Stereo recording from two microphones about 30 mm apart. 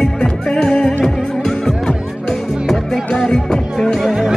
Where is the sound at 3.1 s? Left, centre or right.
Centre.